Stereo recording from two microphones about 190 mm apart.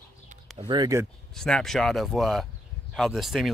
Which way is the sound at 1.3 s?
5° left (ahead or behind).